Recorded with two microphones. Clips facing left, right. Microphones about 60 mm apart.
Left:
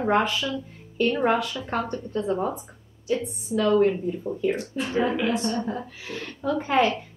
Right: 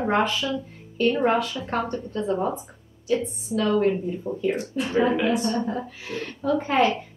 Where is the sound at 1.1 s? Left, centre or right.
Centre.